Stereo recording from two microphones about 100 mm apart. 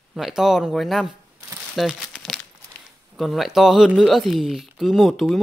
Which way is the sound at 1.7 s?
5° right (ahead or behind).